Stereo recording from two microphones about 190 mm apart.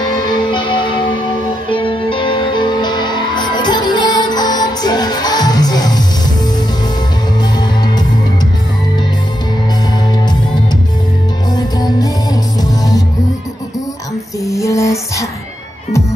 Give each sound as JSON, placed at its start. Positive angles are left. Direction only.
{"t": 0.1, "sound": "music", "side_deg": 25}
{"t": 7.5, "sound": "music", "side_deg": 20}
{"t": 11.5, "sound": "music", "side_deg": 20}
{"t": 14.4, "sound": "music", "side_deg": 15}